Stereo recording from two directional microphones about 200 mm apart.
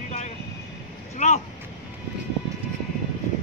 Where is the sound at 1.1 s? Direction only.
35° left (ahead or behind).